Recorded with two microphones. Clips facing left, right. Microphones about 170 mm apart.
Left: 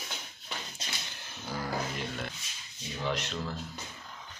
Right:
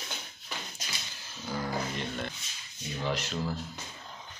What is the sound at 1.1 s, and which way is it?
Music, 60° left (ahead or behind).